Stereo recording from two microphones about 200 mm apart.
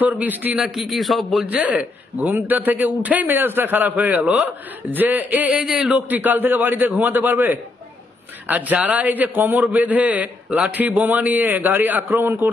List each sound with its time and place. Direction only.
0.0 s a man's voice: 10° right (ahead or behind)